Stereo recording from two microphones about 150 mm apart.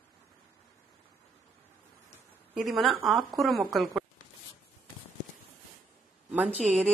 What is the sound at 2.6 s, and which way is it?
A woman's voice, centre (ahead or behind).